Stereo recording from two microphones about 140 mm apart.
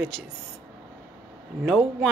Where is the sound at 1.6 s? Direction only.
Centre (ahead or behind).